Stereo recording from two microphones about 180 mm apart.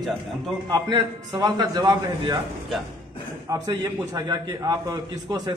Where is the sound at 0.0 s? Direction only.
Centre (ahead or behind).